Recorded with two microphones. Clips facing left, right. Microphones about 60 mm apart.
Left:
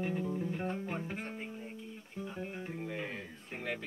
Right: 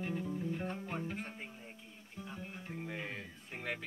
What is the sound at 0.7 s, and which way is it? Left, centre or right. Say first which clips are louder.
Music: left 2 dB; centre.